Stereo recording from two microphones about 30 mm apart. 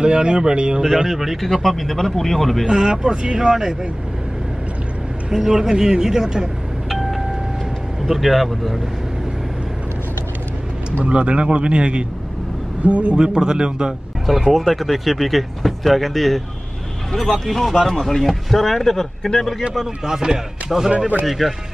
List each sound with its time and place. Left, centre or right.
0.0 s speech: right
1.1 s speech: centre
1.4 s speech: centre
2.6 s speech: right
3.3 s speech: centre
5.3 s speech: centre
6.9 s vehicle: centre
8.0 s speech: centre
11.1 s a man's voice: right
12.8 s speech: right
13.1 s speech: right
14.2 s speech: centre
20.1 s speech: centre
20.7 s speech: centre